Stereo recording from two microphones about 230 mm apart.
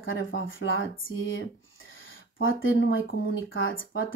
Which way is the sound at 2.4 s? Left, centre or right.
Left.